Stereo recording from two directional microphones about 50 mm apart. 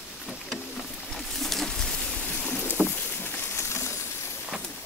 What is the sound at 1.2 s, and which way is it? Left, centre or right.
Boat, centre.